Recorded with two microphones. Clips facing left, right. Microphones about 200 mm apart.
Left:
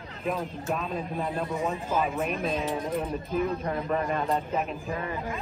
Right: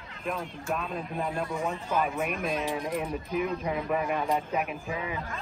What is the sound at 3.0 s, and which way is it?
A man's voice, 10° right (ahead or behind).